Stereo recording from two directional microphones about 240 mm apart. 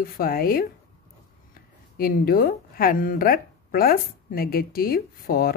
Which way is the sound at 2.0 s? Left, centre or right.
Left.